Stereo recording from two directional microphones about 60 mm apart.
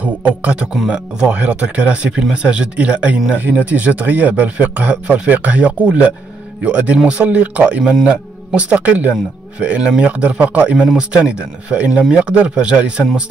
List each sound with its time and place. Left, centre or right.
0.0 s speech: right
10.8 s speech: centre